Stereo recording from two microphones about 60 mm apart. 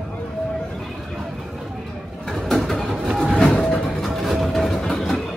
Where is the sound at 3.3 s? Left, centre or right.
Centre.